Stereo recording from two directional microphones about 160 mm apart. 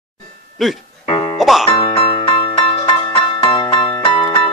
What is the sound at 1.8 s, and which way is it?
Music, 35° left (ahead or behind).